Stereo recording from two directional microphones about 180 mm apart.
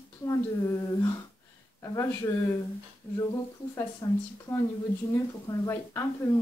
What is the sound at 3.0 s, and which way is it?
Speech, 10° left (ahead or behind).